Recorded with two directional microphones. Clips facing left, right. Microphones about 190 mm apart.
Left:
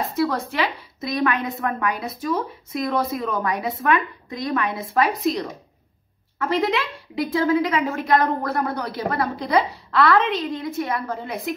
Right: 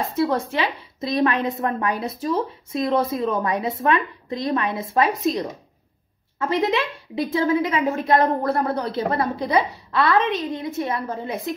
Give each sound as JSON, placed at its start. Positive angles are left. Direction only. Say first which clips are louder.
{"t": 0.2, "sound": "a woman's voice", "louder": "right 1 dB", "side_deg": -25}